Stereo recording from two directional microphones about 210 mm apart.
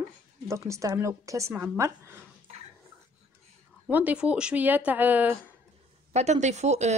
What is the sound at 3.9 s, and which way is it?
Speech, 5° right (ahead or behind).